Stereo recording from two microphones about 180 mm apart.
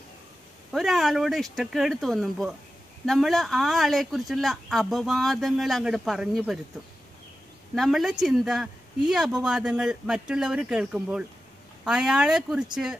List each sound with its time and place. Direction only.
0.7 s speech: centre (ahead or behind)
7.7 s speech: centre (ahead or behind)